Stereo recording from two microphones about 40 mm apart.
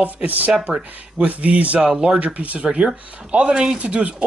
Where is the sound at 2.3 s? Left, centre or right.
Right.